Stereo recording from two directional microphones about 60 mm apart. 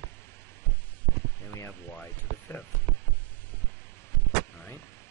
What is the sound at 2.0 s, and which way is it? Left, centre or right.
Speech, left.